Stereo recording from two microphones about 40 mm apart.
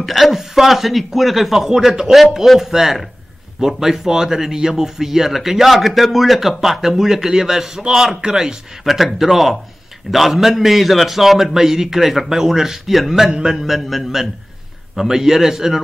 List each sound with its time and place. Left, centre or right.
0.0 s a man's voice: centre